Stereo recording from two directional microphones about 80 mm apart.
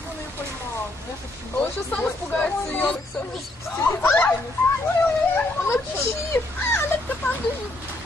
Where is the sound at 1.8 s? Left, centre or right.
Centre.